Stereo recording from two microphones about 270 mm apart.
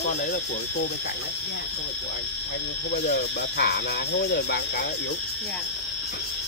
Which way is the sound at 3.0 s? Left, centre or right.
Left.